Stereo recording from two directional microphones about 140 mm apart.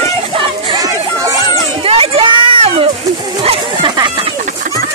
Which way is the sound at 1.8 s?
40° right (ahead or behind).